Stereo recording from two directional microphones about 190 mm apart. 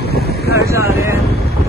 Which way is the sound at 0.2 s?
55° right (ahead or behind).